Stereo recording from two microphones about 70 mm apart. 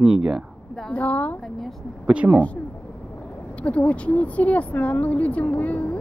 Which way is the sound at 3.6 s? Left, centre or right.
Centre.